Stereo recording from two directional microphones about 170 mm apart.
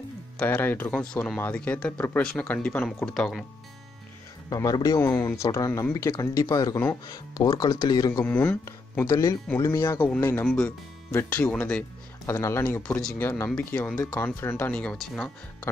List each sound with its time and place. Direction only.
0.4 s speech: 10° left (ahead or behind)
4.5 s speech: 20° left (ahead or behind); by 15.3 s 5° left (ahead or behind)